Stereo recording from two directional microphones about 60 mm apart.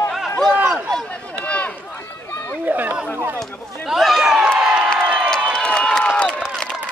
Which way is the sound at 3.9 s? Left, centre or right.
Centre.